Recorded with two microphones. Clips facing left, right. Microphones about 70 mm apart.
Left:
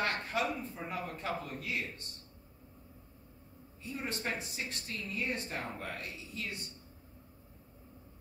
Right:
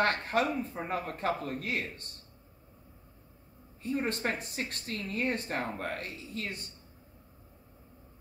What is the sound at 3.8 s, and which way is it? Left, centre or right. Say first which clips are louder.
A man's voice: right 7 dB; right.